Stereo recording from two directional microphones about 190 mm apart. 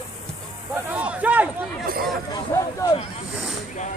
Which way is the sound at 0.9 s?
5° right (ahead or behind).